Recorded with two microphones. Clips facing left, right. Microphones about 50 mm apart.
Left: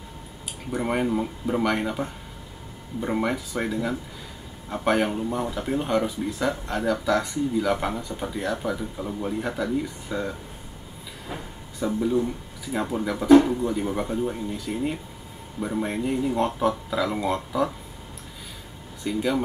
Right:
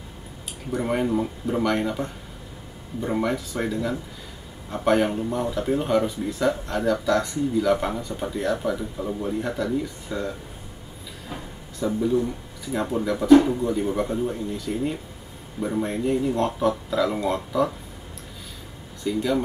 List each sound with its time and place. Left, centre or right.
0.7 s speech: centre
11.8 s speech: centre
19.1 s speech: centre